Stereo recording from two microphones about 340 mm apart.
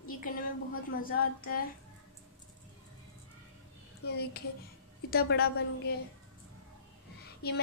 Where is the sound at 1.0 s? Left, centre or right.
Left.